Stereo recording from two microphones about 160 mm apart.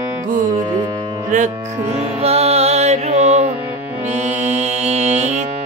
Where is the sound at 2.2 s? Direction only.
40° right (ahead or behind).